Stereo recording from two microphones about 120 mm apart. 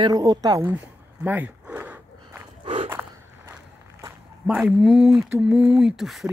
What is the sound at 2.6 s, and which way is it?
Walk, 50° right (ahead or behind).